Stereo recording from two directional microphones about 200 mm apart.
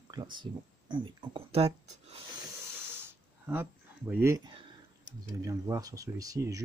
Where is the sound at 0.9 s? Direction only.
25° right (ahead or behind).